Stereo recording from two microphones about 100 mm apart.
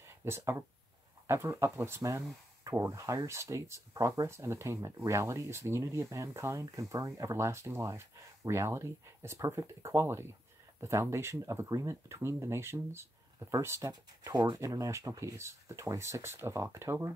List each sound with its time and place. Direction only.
0.2 s speech: 25° right (ahead or behind)